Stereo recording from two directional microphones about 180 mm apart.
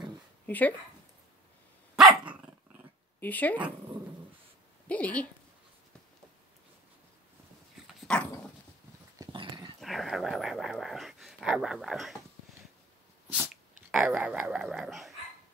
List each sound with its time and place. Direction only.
0.5 s a woman's voice: 10° left (ahead or behind)
2.0 s dog: centre (ahead or behind)
3.2 s speech: 10° left (ahead or behind)
4.8 s a woman's voice: 5° left (ahead or behind)
7.8 s dog: 5° left (ahead or behind)
9.2 s dog: 25° right (ahead or behind)
9.8 s a sound: centre (ahead or behind)
13.3 s dog: 10° right (ahead or behind)
13.9 s speech: 5° right (ahead or behind)